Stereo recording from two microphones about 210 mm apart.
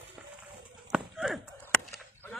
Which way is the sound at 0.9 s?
Centre (ahead or behind).